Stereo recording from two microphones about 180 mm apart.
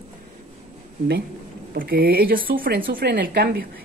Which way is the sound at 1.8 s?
55° right (ahead or behind).